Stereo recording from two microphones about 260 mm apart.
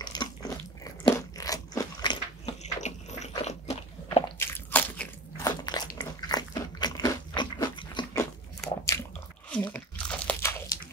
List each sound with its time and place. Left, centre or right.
0.0 s biting: centre
4.4 s biting: centre
9.5 s crumpling: centre